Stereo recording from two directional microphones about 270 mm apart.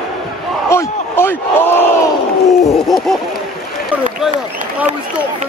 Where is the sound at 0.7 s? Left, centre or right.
Centre.